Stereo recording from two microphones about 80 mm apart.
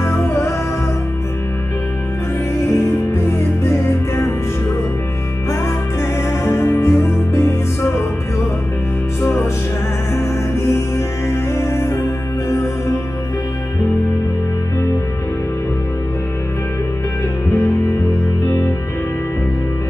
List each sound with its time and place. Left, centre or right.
0.0 s music: left
2.6 s music: left
6.4 s music: left
9.2 s music: left
10.7 s music: left